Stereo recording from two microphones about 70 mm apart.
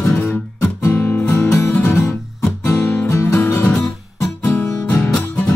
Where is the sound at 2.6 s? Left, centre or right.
Left.